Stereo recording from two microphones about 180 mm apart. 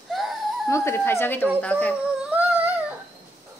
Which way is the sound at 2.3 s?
10° right (ahead or behind).